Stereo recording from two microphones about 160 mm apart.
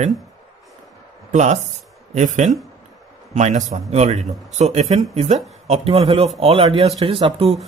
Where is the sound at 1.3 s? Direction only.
50° right (ahead or behind).